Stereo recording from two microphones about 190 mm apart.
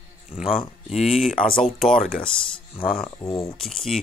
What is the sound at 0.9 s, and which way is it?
Speech, 35° left (ahead or behind).